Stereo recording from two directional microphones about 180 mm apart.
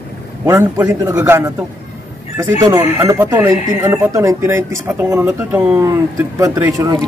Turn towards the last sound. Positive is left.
turn(degrees=-20)  # may be behind; listen again after turning